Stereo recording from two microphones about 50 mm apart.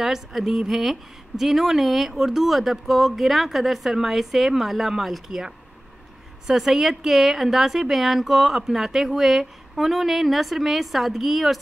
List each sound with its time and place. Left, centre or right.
0.0 s a woman's voice: centre